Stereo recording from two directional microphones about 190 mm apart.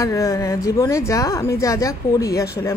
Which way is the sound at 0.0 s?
15° left (ahead or behind).